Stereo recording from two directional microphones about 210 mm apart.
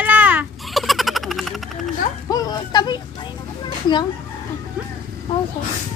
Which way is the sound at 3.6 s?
20° left (ahead or behind).